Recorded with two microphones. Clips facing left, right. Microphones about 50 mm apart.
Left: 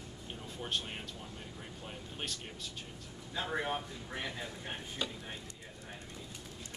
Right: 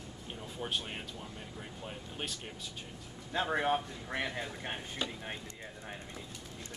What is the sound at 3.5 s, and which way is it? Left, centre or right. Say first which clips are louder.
Speech: right 5 dB; right.